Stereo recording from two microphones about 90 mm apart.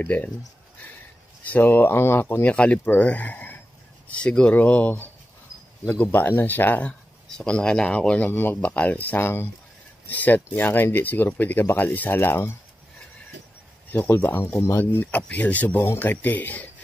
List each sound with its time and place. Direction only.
0.0 s speech: 20° left (ahead or behind)
1.4 s speech: 20° left (ahead or behind)
13.9 s speech: 20° left (ahead or behind)